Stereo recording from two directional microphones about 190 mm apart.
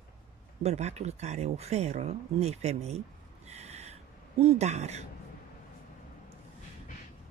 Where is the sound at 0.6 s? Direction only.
35° right (ahead or behind).